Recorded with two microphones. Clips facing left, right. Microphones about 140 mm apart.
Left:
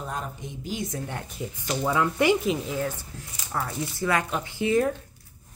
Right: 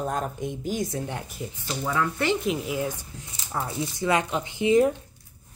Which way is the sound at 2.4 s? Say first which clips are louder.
Even; 10° right (ahead or behind).